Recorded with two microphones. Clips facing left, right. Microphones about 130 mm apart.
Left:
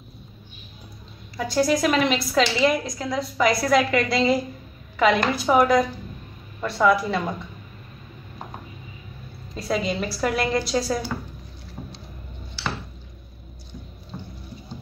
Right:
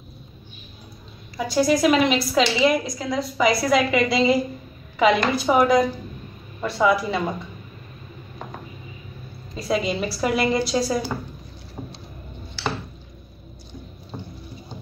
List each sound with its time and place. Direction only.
1.4 s a woman's voice: 5° right (ahead or behind)
9.6 s a woman's voice: 5° right (ahead or behind)
14.1 s music: 15° right (ahead or behind)